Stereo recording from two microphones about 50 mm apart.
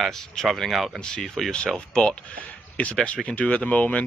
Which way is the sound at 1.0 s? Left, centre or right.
Centre.